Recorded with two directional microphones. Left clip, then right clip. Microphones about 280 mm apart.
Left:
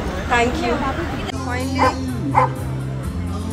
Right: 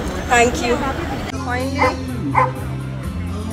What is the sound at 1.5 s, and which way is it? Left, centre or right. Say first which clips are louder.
Speech: right 1 dB; centre.